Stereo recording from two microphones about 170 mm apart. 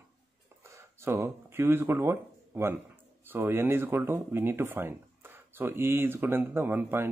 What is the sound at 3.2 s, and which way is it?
Speech, 15° right (ahead or behind).